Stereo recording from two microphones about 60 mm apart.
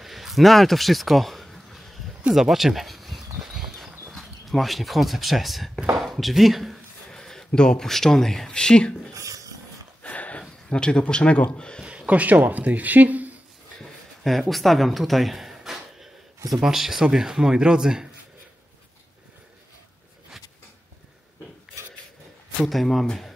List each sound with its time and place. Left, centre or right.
0.0 s a sound: centre
2.3 s speech: centre
3.3 s horse: centre
4.1 s speech: centre
7.1 s speech: centre
9.1 s dishes: right
10.0 s a sound: left
10.7 s speech: centre
11.8 s speech: centre
14.5 s speech: centre
22.6 s speech: centre